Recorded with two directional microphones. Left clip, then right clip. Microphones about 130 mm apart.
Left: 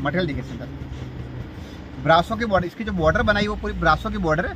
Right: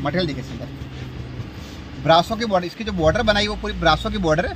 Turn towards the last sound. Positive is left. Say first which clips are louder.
# right 2 dB
turn(degrees=-35)  # may be behind; listen again after turning